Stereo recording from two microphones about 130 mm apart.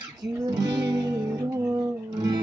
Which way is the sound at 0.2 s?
30° right (ahead or behind).